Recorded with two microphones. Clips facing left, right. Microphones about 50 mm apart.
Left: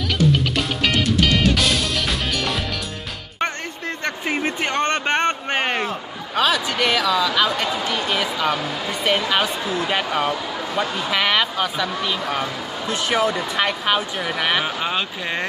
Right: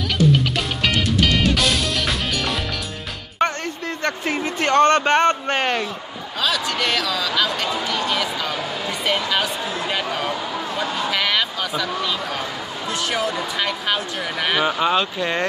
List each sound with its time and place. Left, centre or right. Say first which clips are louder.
0.2 s music: right 1 dB; centre
3.4 s a sound: even; left
4.6 s speech: right 6 dB; centre
6.3 s speech: left 4 dB; left
6.8 s speech: left 3 dB; centre
13.1 s speech: left 5 dB; left
13.8 s speech: left 2 dB; centre